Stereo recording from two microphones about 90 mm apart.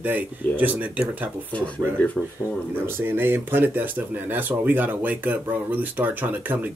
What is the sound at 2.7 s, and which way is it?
Speech, 25° right (ahead or behind).